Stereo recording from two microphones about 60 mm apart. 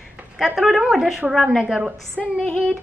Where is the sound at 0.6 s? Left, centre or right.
Centre.